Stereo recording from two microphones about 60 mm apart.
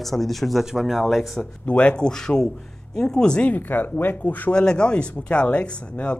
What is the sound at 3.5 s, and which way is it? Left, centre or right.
Speech, left.